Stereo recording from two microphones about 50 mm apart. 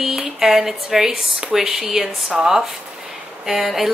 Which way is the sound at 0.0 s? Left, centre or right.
Centre.